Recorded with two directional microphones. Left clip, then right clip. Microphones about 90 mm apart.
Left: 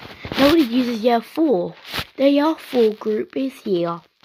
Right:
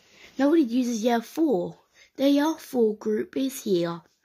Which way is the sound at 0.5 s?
15° right (ahead or behind).